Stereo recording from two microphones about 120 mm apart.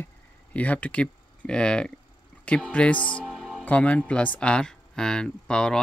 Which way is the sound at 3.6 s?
10° left (ahead or behind).